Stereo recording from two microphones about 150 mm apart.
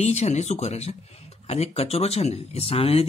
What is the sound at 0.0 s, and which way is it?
Speech, 45° left (ahead or behind).